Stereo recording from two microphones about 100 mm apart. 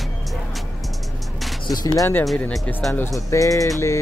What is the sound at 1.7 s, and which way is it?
Speech, 45° left (ahead or behind).